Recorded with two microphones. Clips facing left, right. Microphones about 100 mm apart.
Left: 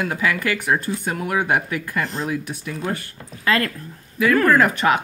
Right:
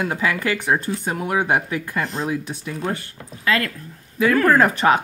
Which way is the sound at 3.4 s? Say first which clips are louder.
Left 1 dB; 40° left (ahead or behind).